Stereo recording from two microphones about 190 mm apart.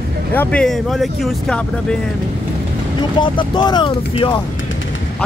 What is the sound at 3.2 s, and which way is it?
Speech, 25° left (ahead or behind).